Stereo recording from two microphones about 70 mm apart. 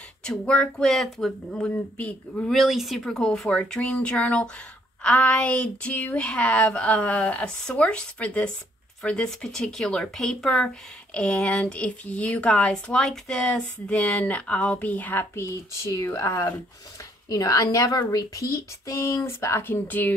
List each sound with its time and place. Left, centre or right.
0.5 s speech: centre
2.4 s speech: centre; by 15.4 s left
15.4 s speech: left
17.3 s a woman's voice: left